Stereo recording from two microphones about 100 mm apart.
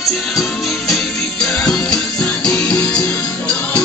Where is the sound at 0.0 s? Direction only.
Centre (ahead or behind).